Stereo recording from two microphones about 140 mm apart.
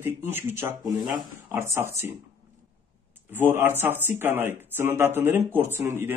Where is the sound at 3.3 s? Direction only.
15° right (ahead or behind).